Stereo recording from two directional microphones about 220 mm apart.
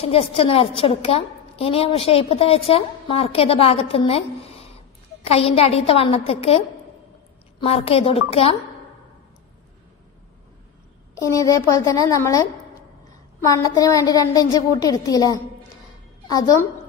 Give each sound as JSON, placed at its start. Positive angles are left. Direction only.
{"t": 0.0, "sound": "a woman's voice", "side_deg": 25}
{"t": 7.6, "sound": "a woman's voice", "side_deg": 25}
{"t": 11.1, "sound": "a woman's voice", "side_deg": 15}